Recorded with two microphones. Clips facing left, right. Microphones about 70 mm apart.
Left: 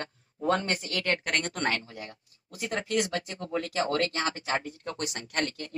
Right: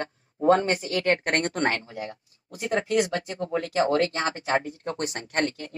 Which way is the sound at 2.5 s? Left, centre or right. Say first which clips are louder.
Right 6 dB; right.